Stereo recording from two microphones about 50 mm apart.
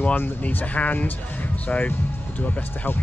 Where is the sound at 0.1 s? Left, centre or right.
Left.